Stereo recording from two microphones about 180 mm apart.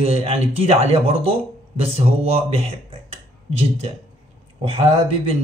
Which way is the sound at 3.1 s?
35° right (ahead or behind).